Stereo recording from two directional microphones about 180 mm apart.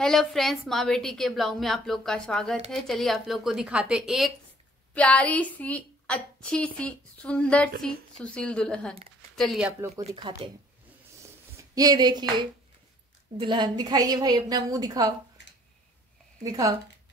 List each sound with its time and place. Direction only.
0.0 s a woman's voice: centre (ahead or behind)
4.9 s a woman's voice: 5° left (ahead or behind)
10.0 s a woman's voice: 30° right (ahead or behind)
11.7 s a woman's voice: 20° right (ahead or behind)
16.4 s a woman's voice: 20° right (ahead or behind)